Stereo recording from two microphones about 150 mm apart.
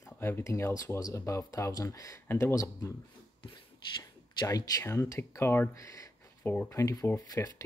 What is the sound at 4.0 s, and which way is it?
Speech, 25° left (ahead or behind).